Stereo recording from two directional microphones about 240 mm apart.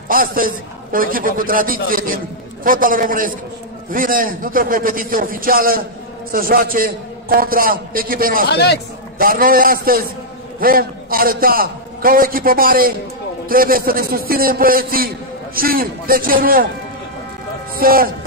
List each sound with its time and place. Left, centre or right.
0.1 s a man's voice: right
8.5 s a man's voice: left
9.2 s a man's voice: right
17.7 s a man's voice: right